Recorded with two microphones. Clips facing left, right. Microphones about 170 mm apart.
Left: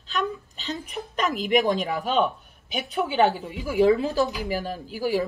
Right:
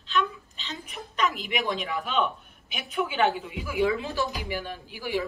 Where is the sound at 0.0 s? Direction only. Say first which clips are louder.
Even; 40° left (ahead or behind).